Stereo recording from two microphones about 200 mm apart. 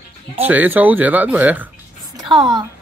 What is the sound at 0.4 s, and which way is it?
Speech, 10° right (ahead or behind).